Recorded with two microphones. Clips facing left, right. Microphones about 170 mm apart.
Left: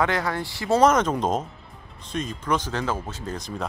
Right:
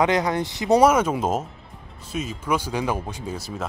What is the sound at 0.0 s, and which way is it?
Speech, 20° right (ahead or behind).